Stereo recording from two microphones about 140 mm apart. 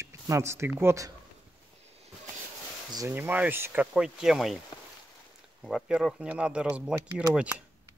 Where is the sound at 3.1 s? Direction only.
15° right (ahead or behind).